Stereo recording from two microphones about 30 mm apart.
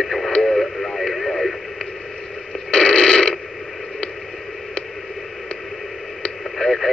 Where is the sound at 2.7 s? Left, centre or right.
Left.